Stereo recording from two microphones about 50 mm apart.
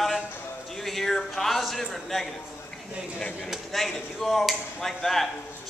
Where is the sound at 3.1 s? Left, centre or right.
Left.